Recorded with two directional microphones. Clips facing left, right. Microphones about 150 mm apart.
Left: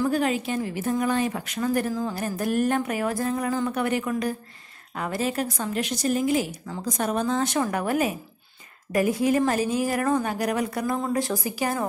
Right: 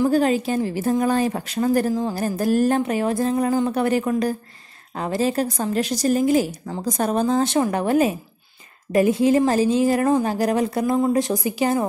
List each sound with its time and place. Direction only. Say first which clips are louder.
0.1 s a woman's voice: right 5 dB; 35° right (ahead or behind)